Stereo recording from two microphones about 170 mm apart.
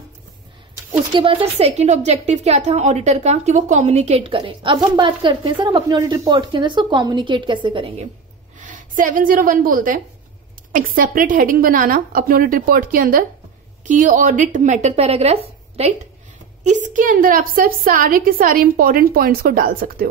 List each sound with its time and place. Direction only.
1.1 s a woman's voice: 30° right (ahead or behind)
8.5 s a woman's voice: 50° right (ahead or behind)
16.6 s a woman's voice: 45° right (ahead or behind)